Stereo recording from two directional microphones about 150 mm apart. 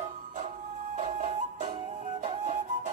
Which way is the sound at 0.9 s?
55° right (ahead or behind).